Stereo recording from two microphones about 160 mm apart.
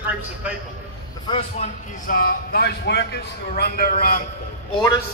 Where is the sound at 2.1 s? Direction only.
65° left (ahead or behind).